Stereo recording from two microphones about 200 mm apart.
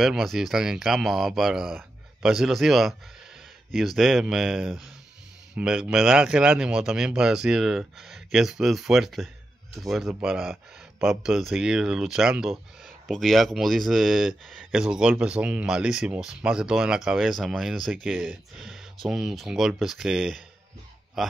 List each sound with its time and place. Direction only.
0.0 s speech: centre (ahead or behind)